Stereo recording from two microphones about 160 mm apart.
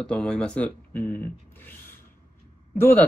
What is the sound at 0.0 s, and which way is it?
Speech, 5° left (ahead or behind).